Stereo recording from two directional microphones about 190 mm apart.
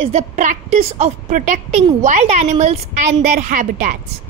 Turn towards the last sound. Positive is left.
turn(degrees=-40)  # may be behind; listen again after turning